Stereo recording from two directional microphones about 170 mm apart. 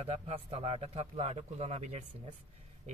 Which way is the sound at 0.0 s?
35° right (ahead or behind).